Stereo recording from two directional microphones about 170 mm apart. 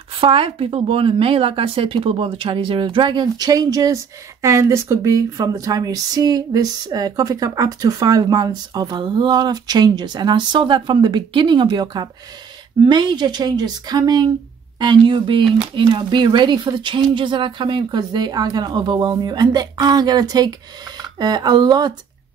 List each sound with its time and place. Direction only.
0.2 s speech: 35° right (ahead or behind)